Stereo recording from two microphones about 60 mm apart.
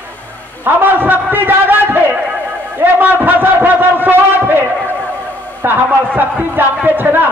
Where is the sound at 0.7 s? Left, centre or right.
Right.